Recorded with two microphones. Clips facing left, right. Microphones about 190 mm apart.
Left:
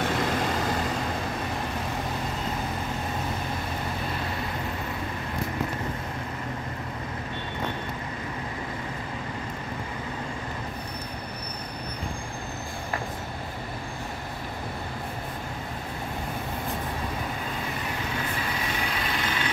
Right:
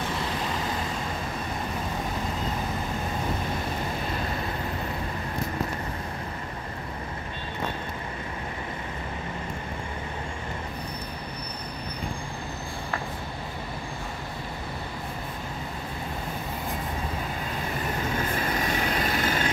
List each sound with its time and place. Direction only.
18.9 s vehicle: 45° right (ahead or behind)